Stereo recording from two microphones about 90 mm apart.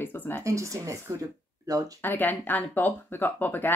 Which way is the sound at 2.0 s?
20° left (ahead or behind).